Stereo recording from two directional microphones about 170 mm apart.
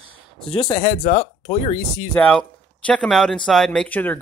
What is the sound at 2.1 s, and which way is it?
Speech, 5° left (ahead or behind).